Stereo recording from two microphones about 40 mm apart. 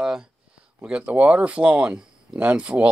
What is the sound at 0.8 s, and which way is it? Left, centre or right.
Speech, right.